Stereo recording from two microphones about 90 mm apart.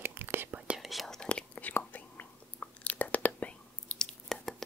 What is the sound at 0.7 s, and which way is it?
Whispering, centre (ahead or behind).